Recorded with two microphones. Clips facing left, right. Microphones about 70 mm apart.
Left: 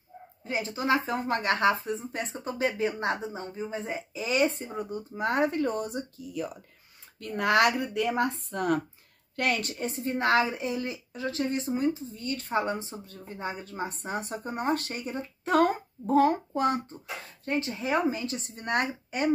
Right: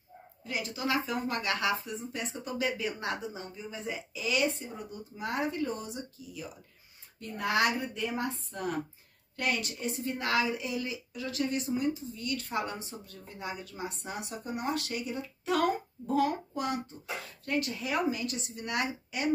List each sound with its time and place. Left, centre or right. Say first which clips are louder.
0.4 s a woman's voice: left 4 dB; left
17.5 s speech: left 3 dB; left